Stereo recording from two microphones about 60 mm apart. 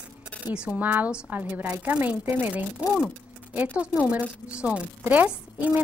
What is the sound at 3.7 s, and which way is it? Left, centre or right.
Speech, right.